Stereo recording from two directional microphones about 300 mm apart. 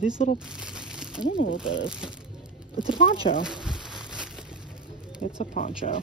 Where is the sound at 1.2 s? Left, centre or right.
Left.